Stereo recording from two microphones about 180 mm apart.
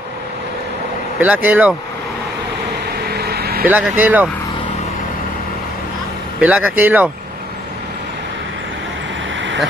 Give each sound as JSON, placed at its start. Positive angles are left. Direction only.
{"t": 1.2, "sound": "speech", "side_deg": -10}
{"t": 3.1, "sound": "vehicle", "side_deg": -60}
{"t": 3.6, "sound": "speech", "side_deg": -10}
{"t": 6.4, "sound": "speech", "side_deg": -10}